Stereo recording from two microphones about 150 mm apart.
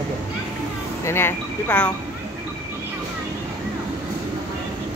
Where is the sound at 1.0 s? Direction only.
15° left (ahead or behind).